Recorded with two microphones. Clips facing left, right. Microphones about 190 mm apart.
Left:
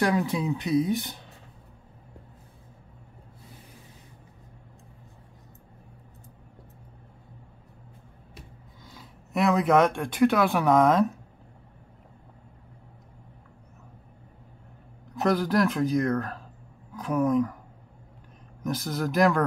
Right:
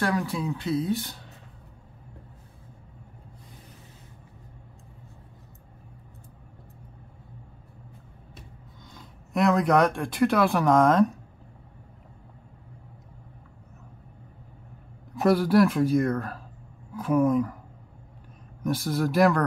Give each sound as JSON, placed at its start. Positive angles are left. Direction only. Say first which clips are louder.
{"t": 0.0, "sound": "speech", "louder": "left 2 dB", "side_deg": 20}
{"t": 8.9, "sound": "speech", "louder": "right 1 dB", "side_deg": 5}
{"t": 15.1, "sound": "speech", "louder": "right 4 dB", "side_deg": -5}
{"t": 18.9, "sound": "speech", "louder": "right 1 dB", "side_deg": -5}